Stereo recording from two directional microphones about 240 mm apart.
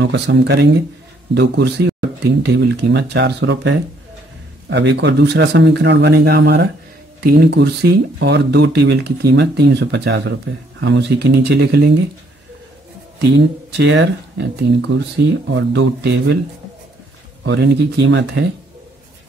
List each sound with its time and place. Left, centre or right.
0.0 s speech: right
13.4 s speech: right
17.5 s speech: right